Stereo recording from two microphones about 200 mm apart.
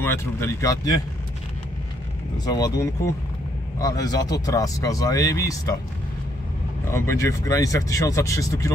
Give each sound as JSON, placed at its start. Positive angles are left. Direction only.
{"t": 0.0, "sound": "speech", "side_deg": 10}
{"t": 2.4, "sound": "speech", "side_deg": 20}
{"t": 6.9, "sound": "speech", "side_deg": 15}